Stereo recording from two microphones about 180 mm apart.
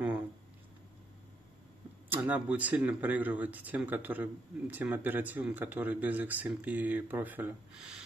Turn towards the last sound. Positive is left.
turn(degrees=-10)  # may be behind; listen again after turning